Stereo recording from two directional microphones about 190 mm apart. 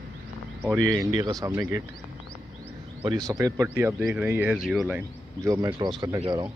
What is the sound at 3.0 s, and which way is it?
Speech, 20° right (ahead or behind).